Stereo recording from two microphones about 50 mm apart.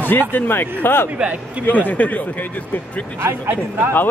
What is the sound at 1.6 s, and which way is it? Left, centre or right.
Speech, left.